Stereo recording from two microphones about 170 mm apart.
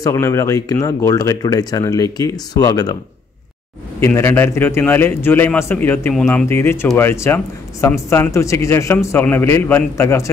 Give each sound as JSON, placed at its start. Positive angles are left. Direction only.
{"t": 0.0, "sound": "speech", "side_deg": 15}
{"t": 4.0, "sound": "speech", "side_deg": 15}